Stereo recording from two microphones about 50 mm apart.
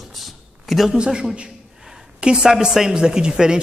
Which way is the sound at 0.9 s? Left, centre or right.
Centre.